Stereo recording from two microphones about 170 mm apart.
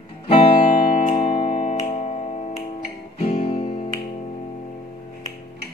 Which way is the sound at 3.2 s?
35° left (ahead or behind).